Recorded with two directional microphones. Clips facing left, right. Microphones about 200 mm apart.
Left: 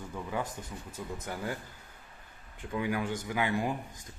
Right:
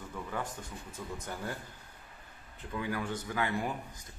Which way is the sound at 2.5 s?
15° left (ahead or behind).